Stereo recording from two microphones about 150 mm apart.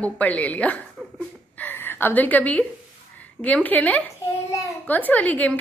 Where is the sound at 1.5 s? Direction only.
15° left (ahead or behind).